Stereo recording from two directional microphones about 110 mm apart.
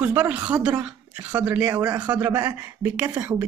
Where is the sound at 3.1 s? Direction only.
20° right (ahead or behind).